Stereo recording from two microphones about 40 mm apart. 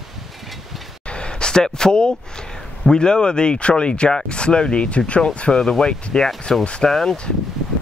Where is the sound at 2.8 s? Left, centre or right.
Left.